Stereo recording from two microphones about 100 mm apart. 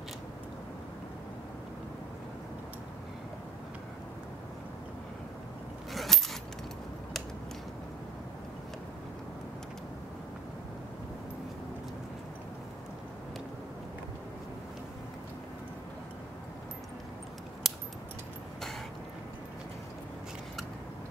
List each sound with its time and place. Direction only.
5.9 s keys jangling: 5° left (ahead or behind)
17.6 s keys jangling: centre (ahead or behind)